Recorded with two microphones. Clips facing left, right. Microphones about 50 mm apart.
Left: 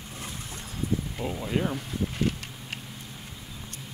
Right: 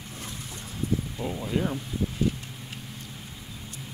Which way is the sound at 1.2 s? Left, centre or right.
Centre.